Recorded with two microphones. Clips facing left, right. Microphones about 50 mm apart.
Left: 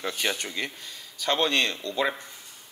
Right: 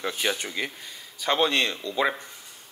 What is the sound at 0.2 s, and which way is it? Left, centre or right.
Speech, centre.